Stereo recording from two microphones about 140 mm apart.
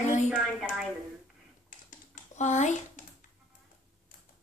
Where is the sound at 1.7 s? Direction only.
60° left (ahead or behind).